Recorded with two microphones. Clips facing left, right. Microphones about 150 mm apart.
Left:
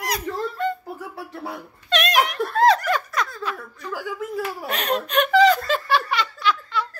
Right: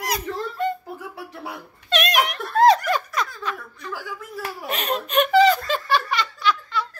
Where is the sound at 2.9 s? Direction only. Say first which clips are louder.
Even; centre (ahead or behind).